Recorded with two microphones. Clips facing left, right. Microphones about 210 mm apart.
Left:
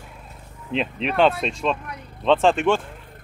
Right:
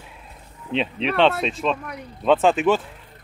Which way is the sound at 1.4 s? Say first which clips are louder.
Right 1 dB; centre (ahead or behind).